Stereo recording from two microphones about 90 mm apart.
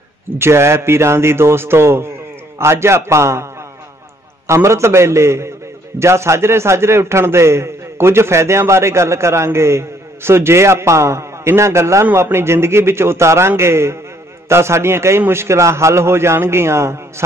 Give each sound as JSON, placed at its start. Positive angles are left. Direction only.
{"t": 0.4, "sound": "a man's voice", "side_deg": -30}
{"t": 4.5, "sound": "a man's voice", "side_deg": -30}